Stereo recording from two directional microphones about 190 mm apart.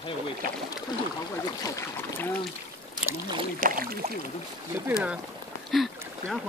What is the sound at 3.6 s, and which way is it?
Rowboat, 45° right (ahead or behind).